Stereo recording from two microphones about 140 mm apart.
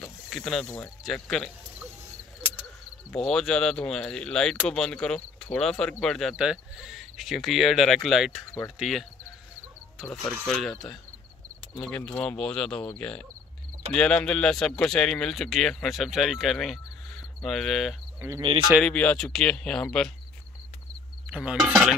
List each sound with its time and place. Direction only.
0.0 s mechanisms: 5° left (ahead or behind)
1.0 s speech: 5° left (ahead or behind)
3.1 s speech: 5° left (ahead or behind)
18.2 s speech: 20° right (ahead or behind)
18.7 s speech: 5° left (ahead or behind)
21.3 s speech: 5° right (ahead or behind)